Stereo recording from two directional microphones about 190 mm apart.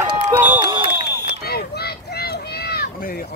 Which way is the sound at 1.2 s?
55° left (ahead or behind).